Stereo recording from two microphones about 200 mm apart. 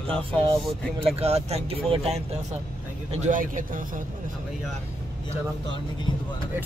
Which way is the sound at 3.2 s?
40° right (ahead or behind).